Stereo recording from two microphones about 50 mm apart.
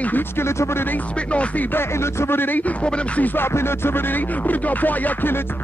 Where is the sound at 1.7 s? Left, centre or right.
Left.